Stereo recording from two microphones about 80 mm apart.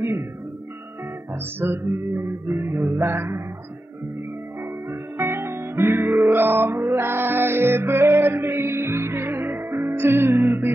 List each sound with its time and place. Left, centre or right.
1.3 s music: right
5.1 s music: right